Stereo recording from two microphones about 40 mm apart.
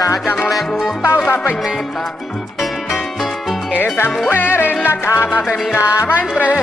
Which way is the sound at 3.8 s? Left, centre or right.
Left.